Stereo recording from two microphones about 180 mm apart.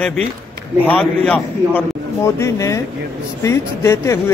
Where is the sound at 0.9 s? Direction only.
5° left (ahead or behind).